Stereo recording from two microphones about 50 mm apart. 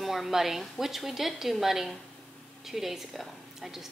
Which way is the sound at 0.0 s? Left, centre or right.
Centre.